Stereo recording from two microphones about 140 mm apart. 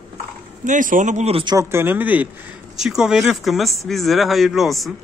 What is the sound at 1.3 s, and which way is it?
Speech, 35° right (ahead or behind).